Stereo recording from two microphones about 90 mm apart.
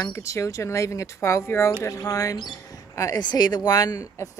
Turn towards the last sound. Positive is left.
turn(degrees=40)  # may be behind; listen again after turning